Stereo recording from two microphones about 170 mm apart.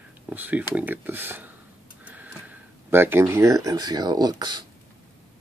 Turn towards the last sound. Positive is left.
turn(degrees=-25)  # may be behind; listen again after turning